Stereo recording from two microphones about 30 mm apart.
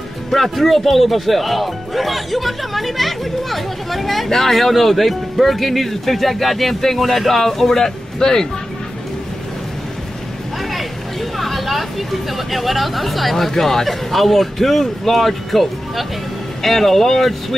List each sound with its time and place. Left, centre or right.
0.3 s speech: centre
7.7 s speech: centre
10.7 s speech: centre